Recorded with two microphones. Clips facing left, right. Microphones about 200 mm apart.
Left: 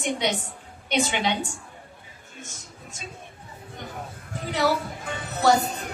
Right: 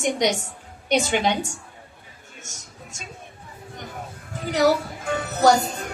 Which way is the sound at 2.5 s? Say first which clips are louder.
Right 1 dB; 85° right.